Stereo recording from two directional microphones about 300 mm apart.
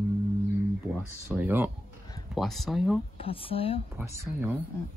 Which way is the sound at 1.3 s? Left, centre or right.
Centre.